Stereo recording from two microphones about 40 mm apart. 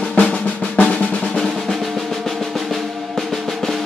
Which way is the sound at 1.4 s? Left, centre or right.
Centre.